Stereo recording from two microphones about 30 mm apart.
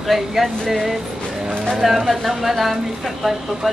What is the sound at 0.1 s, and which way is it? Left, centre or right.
Speech, centre.